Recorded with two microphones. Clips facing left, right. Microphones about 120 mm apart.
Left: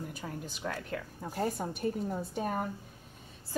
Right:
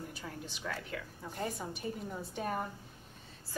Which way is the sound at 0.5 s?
45° left (ahead or behind).